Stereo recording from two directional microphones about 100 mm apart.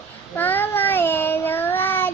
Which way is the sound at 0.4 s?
20° left (ahead or behind).